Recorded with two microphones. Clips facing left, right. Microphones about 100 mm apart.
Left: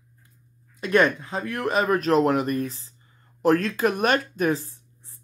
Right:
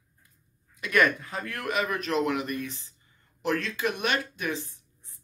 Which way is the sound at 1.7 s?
35° left (ahead or behind).